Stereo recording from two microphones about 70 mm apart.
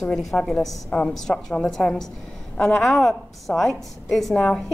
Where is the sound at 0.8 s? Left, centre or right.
Centre.